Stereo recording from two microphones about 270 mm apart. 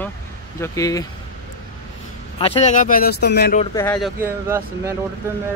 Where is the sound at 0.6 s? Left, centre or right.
Centre.